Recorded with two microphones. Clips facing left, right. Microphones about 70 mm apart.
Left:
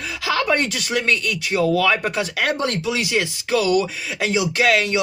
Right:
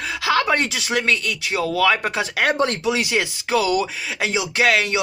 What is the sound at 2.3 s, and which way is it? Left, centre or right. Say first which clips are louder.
Speech: right 2 dB; right.